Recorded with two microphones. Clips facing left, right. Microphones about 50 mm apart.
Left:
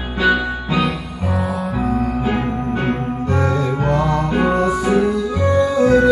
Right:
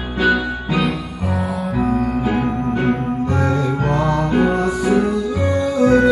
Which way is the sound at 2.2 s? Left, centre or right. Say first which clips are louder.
Right 1 dB; left.